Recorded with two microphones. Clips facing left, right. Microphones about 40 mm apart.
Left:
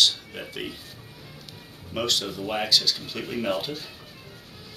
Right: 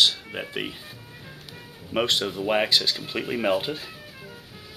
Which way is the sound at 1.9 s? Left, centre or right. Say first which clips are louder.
Right 3 dB; right.